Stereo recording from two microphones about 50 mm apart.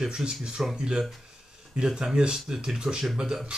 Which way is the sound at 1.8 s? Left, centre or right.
Centre.